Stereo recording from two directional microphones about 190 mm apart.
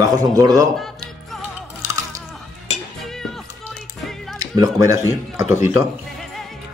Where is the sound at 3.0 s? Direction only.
Centre (ahead or behind).